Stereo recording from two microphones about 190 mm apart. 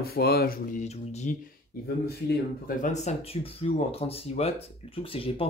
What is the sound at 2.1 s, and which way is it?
Speech, 55° left (ahead or behind).